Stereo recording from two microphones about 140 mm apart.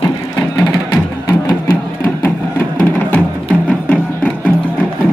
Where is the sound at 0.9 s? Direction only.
20° left (ahead or behind).